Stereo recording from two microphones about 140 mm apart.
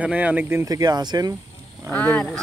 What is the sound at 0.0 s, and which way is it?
Speech, 10° right (ahead or behind).